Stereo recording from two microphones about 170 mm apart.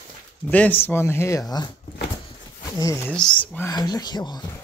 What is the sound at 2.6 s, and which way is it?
Speech, 20° left (ahead or behind).